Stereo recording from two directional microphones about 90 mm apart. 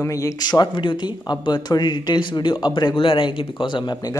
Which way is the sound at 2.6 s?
50° left (ahead or behind).